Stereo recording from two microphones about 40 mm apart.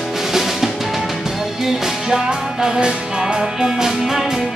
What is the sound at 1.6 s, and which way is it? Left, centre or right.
Music, centre.